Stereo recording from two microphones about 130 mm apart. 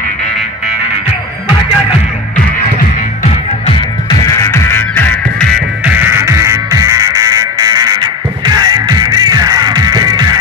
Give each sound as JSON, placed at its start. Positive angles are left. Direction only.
{"t": 4.1, "sound": "music", "side_deg": 25}
{"t": 5.9, "sound": "music", "side_deg": -15}